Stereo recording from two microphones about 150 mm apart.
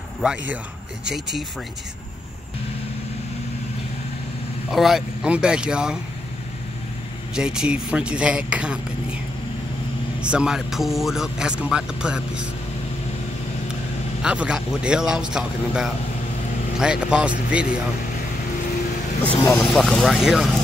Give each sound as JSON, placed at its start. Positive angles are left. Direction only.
{"t": 0.2, "sound": "speech", "side_deg": -5}
{"t": 4.6, "sound": "speech", "side_deg": 0}
{"t": 7.3, "sound": "speech", "side_deg": -5}
{"t": 10.2, "sound": "speech", "side_deg": -5}
{"t": 14.2, "sound": "speech", "side_deg": -5}
{"t": 19.5, "sound": "speech", "side_deg": 0}